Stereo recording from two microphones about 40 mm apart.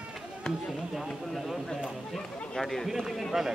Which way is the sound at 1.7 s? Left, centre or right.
Centre.